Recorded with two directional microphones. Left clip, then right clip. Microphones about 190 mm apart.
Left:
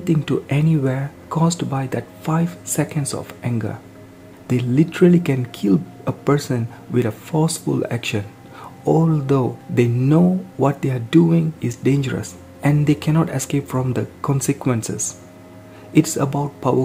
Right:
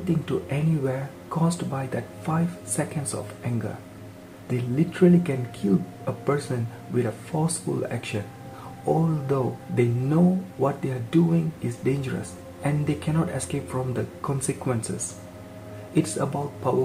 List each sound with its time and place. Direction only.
0.2 s speech: 50° left (ahead or behind)
15.9 s speech: 50° left (ahead or behind)